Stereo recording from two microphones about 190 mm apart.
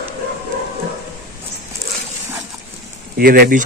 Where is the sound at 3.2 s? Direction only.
50° right (ahead or behind).